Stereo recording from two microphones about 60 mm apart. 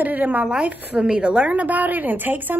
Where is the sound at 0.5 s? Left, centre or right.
Centre.